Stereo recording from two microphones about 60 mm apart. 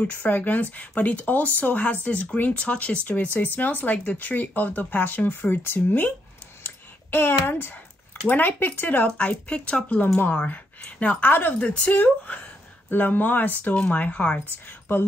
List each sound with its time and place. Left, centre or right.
0.0 s speech: left
9.1 s speech: centre
10.1 s speech: left
14.7 s speech: left